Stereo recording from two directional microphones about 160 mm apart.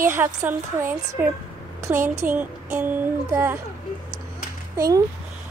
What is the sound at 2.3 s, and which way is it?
A woman's voice, 10° right (ahead or behind).